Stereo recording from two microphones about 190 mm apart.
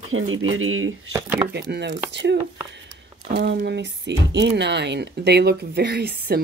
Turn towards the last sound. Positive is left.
turn(degrees=-55)  # may be behind; listen again after turning